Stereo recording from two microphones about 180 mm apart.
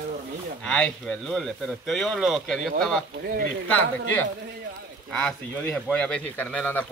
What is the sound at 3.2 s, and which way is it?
Speech, 55° right (ahead or behind).